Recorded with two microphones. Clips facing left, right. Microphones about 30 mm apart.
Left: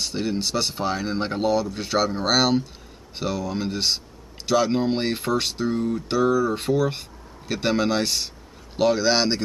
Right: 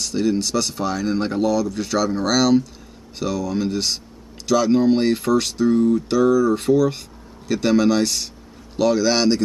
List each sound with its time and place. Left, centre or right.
0.0 s speech: centre